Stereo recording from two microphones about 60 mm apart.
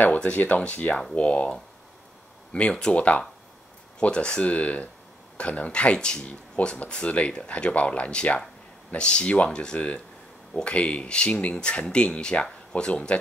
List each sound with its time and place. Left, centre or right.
0.0 s speech: left